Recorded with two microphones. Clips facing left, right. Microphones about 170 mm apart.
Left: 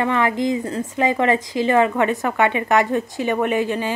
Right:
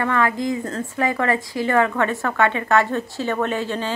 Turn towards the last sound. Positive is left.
turn(degrees=15)  # may be behind; listen again after turning